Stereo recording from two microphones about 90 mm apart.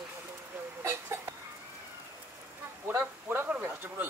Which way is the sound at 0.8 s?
25° right (ahead or behind).